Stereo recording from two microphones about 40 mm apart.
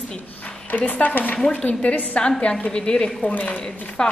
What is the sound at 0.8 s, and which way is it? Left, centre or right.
A woman's voice, left.